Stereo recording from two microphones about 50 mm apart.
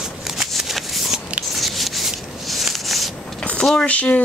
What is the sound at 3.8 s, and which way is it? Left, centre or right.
Speech, left.